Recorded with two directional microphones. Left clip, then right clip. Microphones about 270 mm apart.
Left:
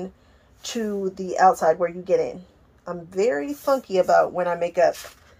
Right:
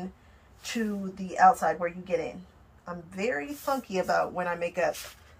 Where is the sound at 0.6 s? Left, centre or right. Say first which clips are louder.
Left 6 dB; left.